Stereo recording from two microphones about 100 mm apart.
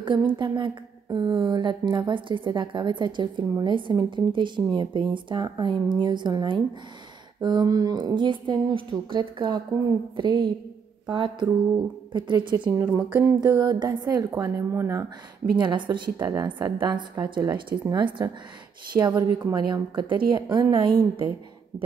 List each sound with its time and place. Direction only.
0.0 s a woman's voice: 50° right (ahead or behind)
12.7 s a woman's voice: 35° right (ahead or behind)
15.5 s a woman's voice: 55° right (ahead or behind)
16.2 s a woman's voice: 30° right (ahead or behind)
16.4 s a woman's voice: 50° right (ahead or behind)
18.9 s a woman's voice: 45° right (ahead or behind)